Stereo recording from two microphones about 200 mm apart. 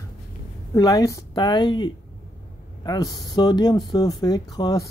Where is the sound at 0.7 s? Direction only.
20° left (ahead or behind).